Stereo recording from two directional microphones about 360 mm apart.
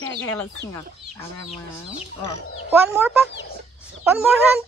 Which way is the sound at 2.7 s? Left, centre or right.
Centre.